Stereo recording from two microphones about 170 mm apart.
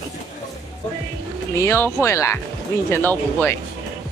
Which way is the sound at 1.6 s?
15° left (ahead or behind).